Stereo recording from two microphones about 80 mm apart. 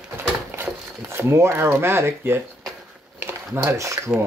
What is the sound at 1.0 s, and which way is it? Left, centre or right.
Speech, right.